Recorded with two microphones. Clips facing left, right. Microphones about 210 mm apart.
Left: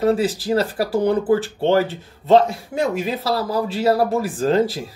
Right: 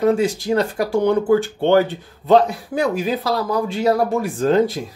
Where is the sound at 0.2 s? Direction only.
5° left (ahead or behind).